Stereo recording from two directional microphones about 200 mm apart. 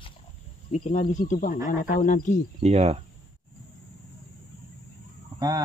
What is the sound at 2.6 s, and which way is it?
Speech, 30° right (ahead or behind).